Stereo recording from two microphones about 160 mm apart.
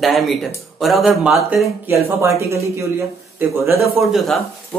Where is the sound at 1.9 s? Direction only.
15° right (ahead or behind).